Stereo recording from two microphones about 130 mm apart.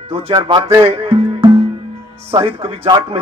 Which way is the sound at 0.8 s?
50° right (ahead or behind).